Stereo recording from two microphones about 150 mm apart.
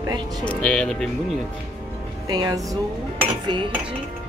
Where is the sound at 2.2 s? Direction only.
25° right (ahead or behind).